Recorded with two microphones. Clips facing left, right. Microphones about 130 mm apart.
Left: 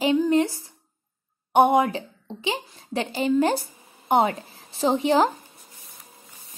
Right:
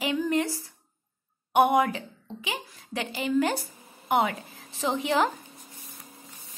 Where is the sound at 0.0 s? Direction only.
25° left (ahead or behind).